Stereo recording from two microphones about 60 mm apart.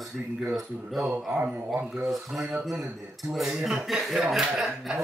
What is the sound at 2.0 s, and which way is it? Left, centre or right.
Speech, centre.